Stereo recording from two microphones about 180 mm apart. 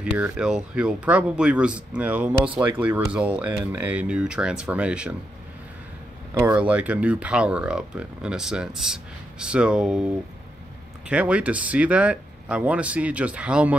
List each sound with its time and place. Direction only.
0.0 s speech: 5° right (ahead or behind)
6.3 s speech: 10° right (ahead or behind)